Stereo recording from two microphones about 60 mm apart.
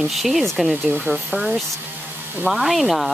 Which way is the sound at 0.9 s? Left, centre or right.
Right.